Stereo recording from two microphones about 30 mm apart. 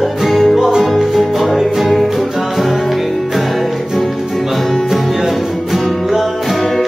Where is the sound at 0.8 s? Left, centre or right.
Centre.